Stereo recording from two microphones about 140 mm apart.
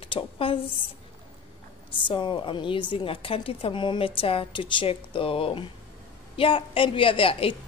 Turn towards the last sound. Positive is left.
turn(degrees=40)  # may be behind; listen again after turning